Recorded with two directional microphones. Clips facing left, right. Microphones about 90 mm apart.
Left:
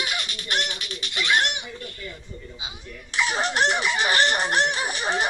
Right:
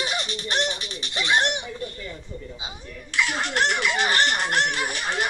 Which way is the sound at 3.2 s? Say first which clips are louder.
Left 1 dB; 20° left (ahead or behind).